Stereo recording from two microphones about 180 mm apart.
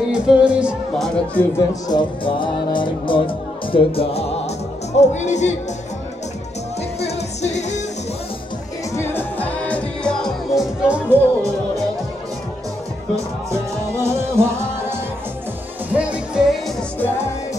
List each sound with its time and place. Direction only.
0.1 s speech: 5° right (ahead or behind)
1.9 s speech: 25° left (ahead or behind)
7.0 s music: 40° left (ahead or behind)
8.9 s music: 15° left (ahead or behind); by 11.8 s 15° right (ahead or behind)
13.1 s music: 15° right (ahead or behind)
15.9 s music: 5° right (ahead or behind)